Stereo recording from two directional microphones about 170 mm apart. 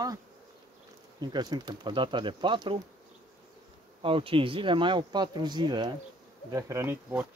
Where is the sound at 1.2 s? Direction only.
25° right (ahead or behind).